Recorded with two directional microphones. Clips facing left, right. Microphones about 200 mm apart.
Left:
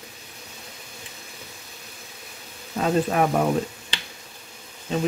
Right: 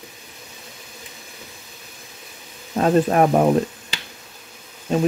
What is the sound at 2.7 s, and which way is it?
Speech, 45° right (ahead or behind).